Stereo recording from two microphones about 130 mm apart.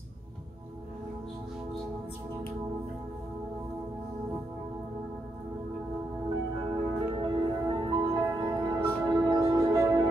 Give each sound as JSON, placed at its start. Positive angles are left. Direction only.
{"t": 6.7, "sound": "music", "side_deg": -40}